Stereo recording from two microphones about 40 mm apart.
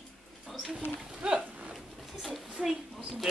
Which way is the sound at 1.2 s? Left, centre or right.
Centre.